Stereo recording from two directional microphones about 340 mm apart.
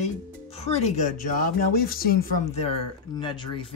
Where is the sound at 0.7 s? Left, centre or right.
Centre.